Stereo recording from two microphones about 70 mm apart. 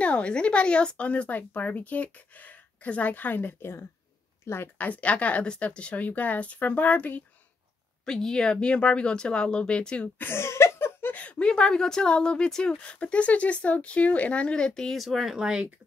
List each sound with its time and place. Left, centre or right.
0.0 s speech: centre
4.7 s speech: left
8.0 s a woman's voice: centre
10.2 s laughter: left
11.1 s a woman's voice: centre
15.3 s speech: centre